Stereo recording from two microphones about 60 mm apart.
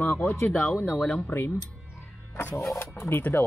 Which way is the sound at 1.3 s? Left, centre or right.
Left.